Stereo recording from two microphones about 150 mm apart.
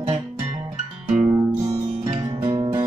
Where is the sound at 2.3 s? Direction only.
25° right (ahead or behind).